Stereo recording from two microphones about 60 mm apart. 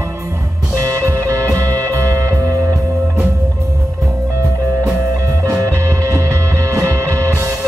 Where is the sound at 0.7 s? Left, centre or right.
Right.